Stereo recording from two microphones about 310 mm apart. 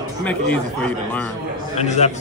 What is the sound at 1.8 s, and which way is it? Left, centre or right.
Speech, left.